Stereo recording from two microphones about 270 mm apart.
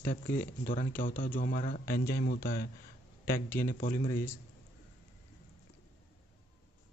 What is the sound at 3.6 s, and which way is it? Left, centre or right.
Speech, left.